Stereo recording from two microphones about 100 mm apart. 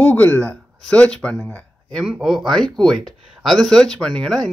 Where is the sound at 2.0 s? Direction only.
5° right (ahead or behind).